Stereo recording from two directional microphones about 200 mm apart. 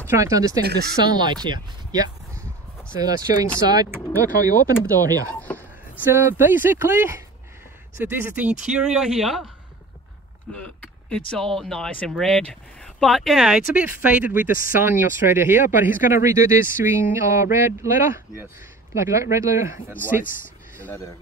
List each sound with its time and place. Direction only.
0.0 s speech: 15° right (ahead or behind)
5.3 s a sound: 5° left (ahead or behind)
6.0 s speech: 10° right (ahead or behind)
8.4 s speech: 5° right (ahead or behind)
10.5 s speech: 5° left (ahead or behind)
14.5 s speech: 45° left (ahead or behind)
14.8 s speech: 10° right (ahead or behind)
20.8 s speech: 10° left (ahead or behind)